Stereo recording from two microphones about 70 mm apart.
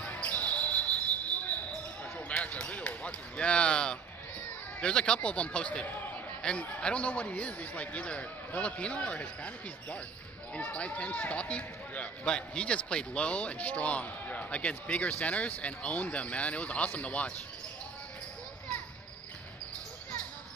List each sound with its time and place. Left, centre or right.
0.0 s basketball bounce: left
2.1 s basketball bounce: left
4.7 s speech: centre